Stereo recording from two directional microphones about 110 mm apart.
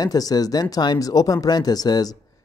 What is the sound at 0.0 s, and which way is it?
Speech, 35° left (ahead or behind).